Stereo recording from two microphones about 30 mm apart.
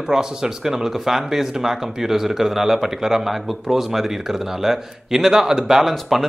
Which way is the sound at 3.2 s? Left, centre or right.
Centre.